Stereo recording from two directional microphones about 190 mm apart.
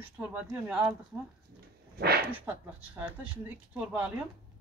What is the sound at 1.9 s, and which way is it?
Speech, 55° right (ahead or behind).